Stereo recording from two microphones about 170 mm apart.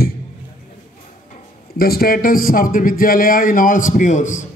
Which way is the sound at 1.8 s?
60° left (ahead or behind).